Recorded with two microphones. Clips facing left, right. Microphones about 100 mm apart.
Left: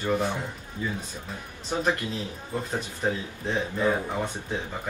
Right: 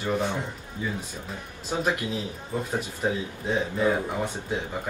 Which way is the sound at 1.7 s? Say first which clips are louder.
Even; 10° right (ahead or behind).